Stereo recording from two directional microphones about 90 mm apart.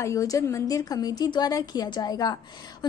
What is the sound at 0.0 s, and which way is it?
A woman's voice, 40° left (ahead or behind).